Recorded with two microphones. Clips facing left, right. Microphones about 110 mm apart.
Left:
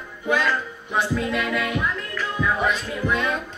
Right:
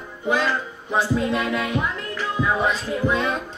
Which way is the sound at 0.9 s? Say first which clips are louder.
Right 2 dB; 30° right (ahead or behind).